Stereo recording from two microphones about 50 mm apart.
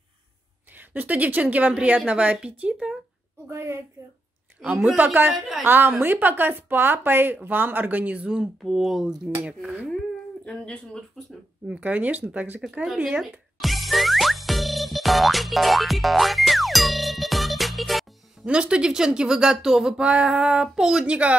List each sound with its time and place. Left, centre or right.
0.7 s a woman's voice: right
3.4 s a woman's voice: right
4.6 s speech: centre
4.9 s a woman's voice: right
8.6 s speech: centre
9.3 s speech: centre
10.4 s speech: centre
11.6 s a woman's voice: right
12.8 s speech: centre
13.2 s music: centre
18.4 s speech: centre
20.6 s speech: centre
21.0 s speech: right